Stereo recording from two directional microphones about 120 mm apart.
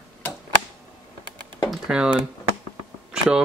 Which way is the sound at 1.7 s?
5° right (ahead or behind).